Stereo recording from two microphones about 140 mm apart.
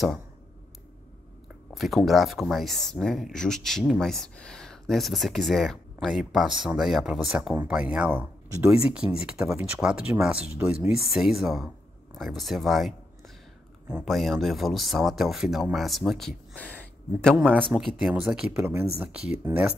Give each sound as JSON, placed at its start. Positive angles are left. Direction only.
{"t": 1.7, "sound": "speech", "side_deg": 0}
{"t": 8.5, "sound": "speech", "side_deg": -20}
{"t": 8.8, "sound": "speech", "side_deg": -5}
{"t": 17.9, "sound": "speech", "side_deg": -5}